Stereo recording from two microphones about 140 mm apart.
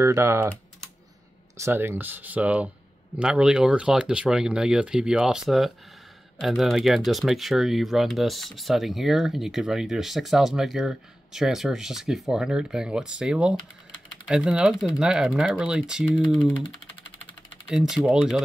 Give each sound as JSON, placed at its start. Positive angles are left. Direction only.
{"t": 0.0, "sound": "speech", "side_deg": -20}
{"t": 1.6, "sound": "speech", "side_deg": -15}
{"t": 16.2, "sound": "speech", "side_deg": 10}
{"t": 17.6, "sound": "speech", "side_deg": -5}